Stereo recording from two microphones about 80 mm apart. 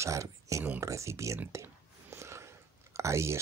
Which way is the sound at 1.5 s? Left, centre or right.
Right.